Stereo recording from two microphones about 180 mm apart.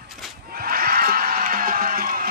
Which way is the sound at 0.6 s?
55° right (ahead or behind).